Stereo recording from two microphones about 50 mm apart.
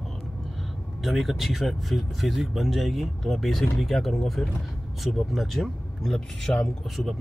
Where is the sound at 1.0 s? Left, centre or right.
Centre.